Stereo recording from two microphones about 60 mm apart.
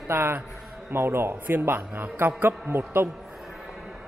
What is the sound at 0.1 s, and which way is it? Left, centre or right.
A man's voice, right.